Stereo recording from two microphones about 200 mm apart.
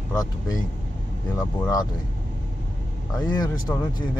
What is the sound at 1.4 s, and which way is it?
Speech, 20° left (ahead or behind).